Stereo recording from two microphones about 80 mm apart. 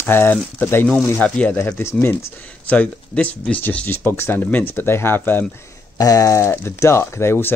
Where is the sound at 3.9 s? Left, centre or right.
Left.